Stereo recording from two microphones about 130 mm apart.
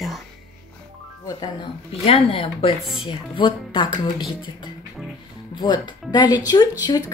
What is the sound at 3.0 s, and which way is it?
Speech, 40° left (ahead or behind).